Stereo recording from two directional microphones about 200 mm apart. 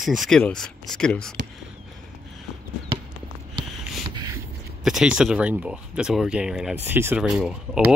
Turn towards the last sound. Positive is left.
turn(degrees=0)  # may be behind; listen again after turning